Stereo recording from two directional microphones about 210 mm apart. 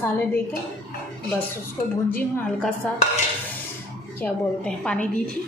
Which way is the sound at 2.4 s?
5° left (ahead or behind).